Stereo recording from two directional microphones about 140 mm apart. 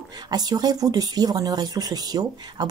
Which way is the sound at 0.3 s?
30° right (ahead or behind).